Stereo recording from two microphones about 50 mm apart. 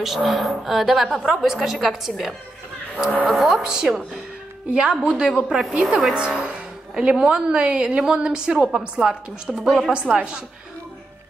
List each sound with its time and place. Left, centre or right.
0.0 s a woman's voice: centre
4.6 s a woman's voice: right
9.9 s a woman's voice: right